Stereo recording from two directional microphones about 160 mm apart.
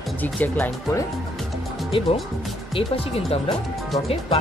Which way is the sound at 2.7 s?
35° left (ahead or behind).